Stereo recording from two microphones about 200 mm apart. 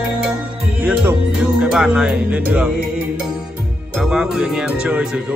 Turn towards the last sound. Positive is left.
turn(degrees=-5)  # may be behind; listen again after turning